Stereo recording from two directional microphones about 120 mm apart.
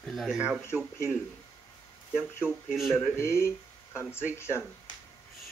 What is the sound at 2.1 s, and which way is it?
Speech, 5° right (ahead or behind).